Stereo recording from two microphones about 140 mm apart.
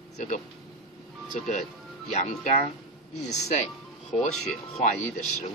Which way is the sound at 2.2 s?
60° left (ahead or behind).